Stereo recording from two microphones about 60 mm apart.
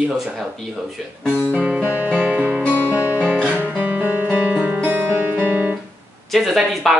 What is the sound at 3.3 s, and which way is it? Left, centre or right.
Guitar, right.